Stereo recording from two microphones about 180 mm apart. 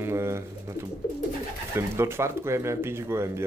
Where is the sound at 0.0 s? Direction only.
15° right (ahead or behind).